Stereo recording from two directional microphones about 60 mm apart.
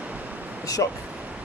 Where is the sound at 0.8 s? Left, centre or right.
Left.